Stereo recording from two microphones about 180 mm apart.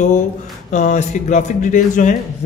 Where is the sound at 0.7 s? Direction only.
40° left (ahead or behind).